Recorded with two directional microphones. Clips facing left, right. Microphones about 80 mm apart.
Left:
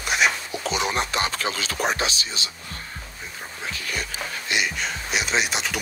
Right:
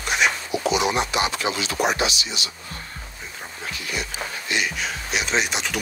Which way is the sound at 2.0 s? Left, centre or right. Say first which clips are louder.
Right 2 dB; left.